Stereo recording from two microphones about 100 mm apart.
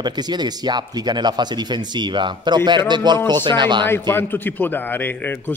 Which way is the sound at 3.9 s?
20° left (ahead or behind).